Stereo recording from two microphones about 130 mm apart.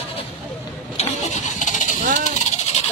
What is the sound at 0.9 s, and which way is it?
Vehicle, 65° left (ahead or behind).